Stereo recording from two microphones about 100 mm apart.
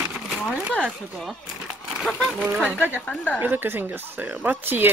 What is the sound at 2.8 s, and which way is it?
Speech, 15° left (ahead or behind).